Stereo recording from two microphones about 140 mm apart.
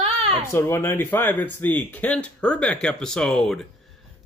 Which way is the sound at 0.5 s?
15° left (ahead or behind).